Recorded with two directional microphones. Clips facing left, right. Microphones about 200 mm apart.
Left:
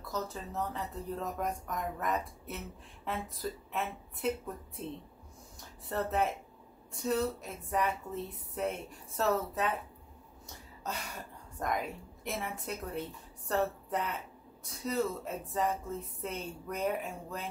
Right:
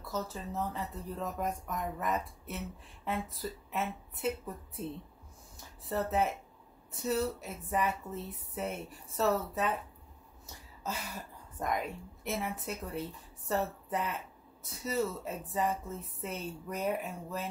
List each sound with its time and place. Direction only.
0.0 s speech: centre (ahead or behind)
5.9 s speech: centre (ahead or behind)